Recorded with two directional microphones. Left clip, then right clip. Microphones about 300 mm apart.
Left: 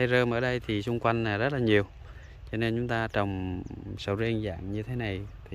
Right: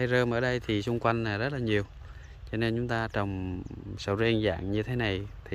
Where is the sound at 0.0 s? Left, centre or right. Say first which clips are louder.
Left 1 dB; centre.